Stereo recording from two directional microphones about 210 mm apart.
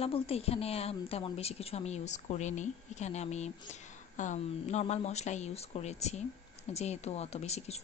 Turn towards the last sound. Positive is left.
turn(degrees=30)  # may be behind; listen again after turning